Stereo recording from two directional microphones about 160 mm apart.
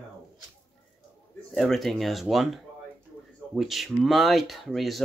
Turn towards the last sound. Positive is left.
turn(degrees=0)  # may be behind; listen again after turning